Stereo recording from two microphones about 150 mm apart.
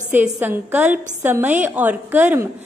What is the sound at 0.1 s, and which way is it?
A woman's voice, 10° right (ahead or behind).